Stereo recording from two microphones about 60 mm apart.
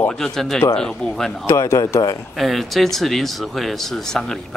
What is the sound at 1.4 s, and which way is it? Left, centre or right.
Speech, left.